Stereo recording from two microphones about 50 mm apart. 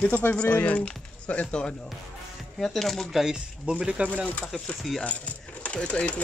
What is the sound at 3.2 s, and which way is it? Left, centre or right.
Speech, centre.